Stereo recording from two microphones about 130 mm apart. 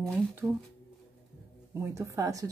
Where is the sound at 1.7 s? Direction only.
20° right (ahead or behind).